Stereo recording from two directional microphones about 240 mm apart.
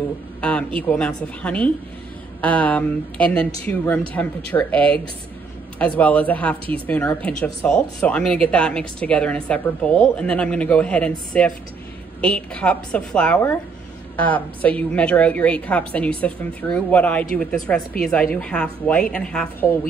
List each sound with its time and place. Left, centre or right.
0.4 s speech: centre